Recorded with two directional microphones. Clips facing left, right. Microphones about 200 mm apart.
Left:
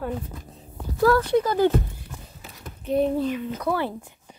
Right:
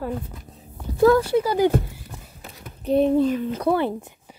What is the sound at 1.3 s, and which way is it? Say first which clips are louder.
Speech: right 1 dB; 10° right (ahead or behind).